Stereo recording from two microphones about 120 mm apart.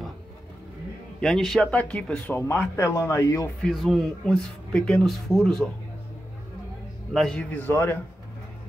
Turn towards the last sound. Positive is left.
turn(degrees=15)  # may be behind; listen again after turning